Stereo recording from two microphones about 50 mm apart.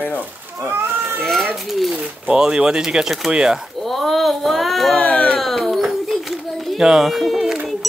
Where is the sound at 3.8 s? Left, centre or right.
Centre.